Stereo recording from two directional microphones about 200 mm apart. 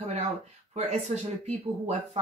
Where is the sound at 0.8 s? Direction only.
35° right (ahead or behind).